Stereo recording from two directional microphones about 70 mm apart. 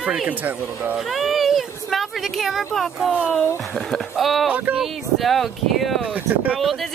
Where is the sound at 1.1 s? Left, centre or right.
Centre.